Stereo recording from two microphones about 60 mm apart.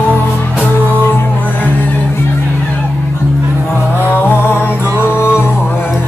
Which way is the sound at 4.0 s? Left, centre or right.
Left.